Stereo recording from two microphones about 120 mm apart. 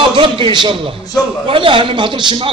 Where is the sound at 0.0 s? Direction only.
45° right (ahead or behind).